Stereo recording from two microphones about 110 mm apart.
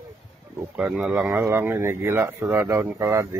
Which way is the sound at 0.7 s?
10° right (ahead or behind).